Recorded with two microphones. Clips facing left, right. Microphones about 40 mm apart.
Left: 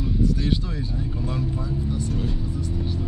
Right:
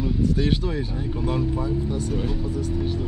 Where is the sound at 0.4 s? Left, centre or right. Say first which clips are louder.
Right 3 dB; right.